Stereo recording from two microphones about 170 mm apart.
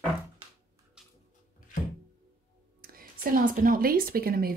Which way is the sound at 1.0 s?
5° right (ahead or behind).